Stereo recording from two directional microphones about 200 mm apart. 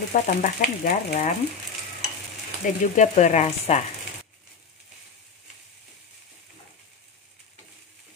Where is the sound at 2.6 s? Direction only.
40° left (ahead or behind).